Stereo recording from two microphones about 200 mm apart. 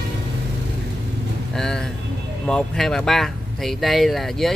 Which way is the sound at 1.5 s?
5° left (ahead or behind).